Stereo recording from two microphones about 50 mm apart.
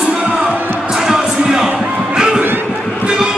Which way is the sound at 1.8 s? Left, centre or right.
Centre.